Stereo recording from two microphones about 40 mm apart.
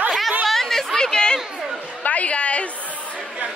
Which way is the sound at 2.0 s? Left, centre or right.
Left.